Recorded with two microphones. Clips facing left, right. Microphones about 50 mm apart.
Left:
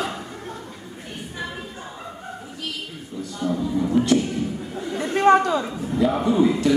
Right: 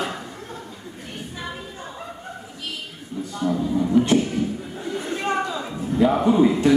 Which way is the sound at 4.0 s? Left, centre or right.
Right.